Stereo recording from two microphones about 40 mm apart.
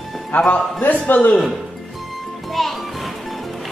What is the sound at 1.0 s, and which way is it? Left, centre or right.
Speech, left.